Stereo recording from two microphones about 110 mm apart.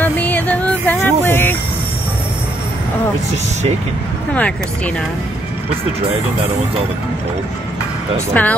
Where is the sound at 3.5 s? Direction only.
90° right.